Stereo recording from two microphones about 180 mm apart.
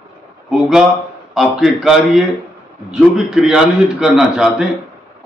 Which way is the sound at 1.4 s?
Centre (ahead or behind).